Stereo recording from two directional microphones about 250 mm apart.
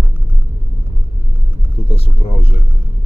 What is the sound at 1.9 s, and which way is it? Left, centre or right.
Speech, left.